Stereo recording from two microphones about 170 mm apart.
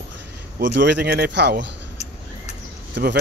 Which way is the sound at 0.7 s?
85° right.